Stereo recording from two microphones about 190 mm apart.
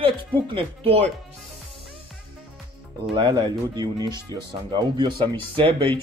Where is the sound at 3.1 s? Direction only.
25° right (ahead or behind).